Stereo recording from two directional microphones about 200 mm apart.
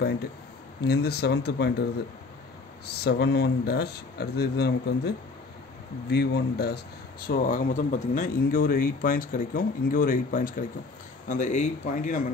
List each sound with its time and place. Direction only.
0.8 s speech: 55° left (ahead or behind)
2.9 s speech: 55° left (ahead or behind)